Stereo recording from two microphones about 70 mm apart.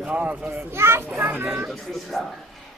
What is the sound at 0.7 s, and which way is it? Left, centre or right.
Speech, right.